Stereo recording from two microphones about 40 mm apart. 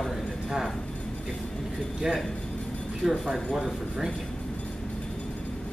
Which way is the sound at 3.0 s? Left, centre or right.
Centre.